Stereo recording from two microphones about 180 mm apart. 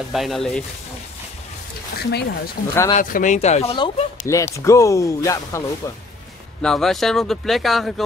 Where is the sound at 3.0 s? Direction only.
45° left (ahead or behind).